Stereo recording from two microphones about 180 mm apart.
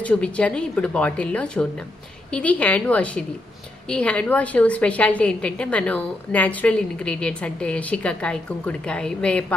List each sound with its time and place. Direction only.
0.0 s a woman's voice: 5° left (ahead or behind)